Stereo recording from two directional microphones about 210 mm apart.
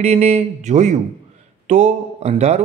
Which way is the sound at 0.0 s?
30° right (ahead or behind).